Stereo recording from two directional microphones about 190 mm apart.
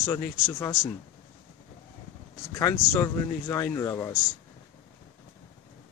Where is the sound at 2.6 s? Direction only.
15° left (ahead or behind).